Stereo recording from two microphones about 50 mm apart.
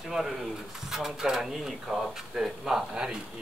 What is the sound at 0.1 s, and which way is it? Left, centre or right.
Speech, centre.